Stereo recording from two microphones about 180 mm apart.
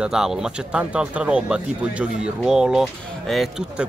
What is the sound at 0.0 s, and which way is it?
Speech, 5° right (ahead or behind).